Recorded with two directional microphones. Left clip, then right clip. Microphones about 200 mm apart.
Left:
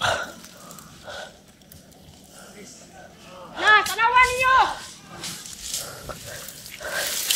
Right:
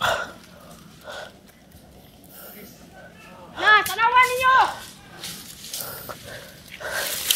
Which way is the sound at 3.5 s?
20° right (ahead or behind).